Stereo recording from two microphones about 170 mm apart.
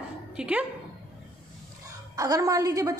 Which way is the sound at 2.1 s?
20° right (ahead or behind).